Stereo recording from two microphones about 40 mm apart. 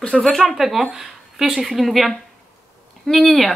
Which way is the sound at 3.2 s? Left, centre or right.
Centre.